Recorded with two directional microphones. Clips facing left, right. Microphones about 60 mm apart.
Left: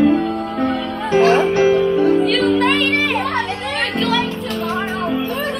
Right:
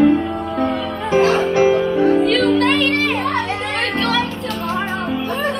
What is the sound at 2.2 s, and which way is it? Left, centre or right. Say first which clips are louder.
Music: even; centre.